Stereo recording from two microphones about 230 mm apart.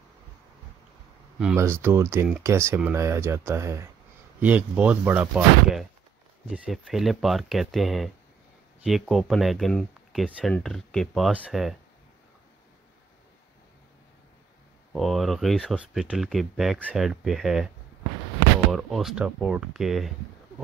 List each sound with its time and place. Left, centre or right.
1.4 s speech: centre
14.9 s speech: centre
18.7 s speech: centre